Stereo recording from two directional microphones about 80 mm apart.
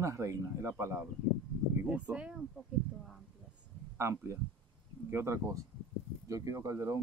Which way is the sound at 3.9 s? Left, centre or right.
Right.